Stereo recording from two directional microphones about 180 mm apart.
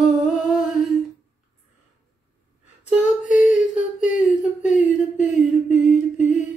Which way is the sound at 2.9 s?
5° right (ahead or behind).